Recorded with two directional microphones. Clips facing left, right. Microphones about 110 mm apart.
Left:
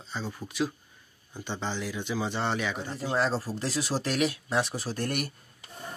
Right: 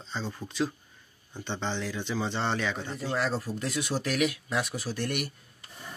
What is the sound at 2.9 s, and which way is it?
Speech, 25° left (ahead or behind).